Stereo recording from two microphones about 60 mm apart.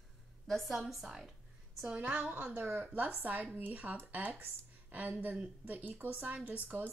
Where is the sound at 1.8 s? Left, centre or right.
Right.